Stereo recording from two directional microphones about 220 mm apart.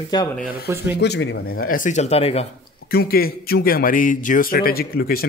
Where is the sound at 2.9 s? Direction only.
45° left (ahead or behind).